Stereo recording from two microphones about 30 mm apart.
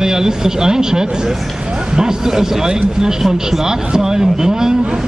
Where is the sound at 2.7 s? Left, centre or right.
Right.